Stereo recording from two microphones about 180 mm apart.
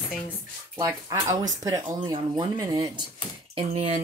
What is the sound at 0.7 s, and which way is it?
Speech, 20° right (ahead or behind).